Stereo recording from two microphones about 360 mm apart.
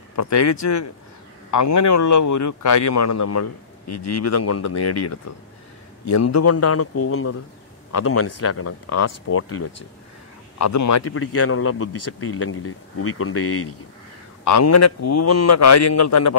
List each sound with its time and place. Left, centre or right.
0.1 s a man's voice: left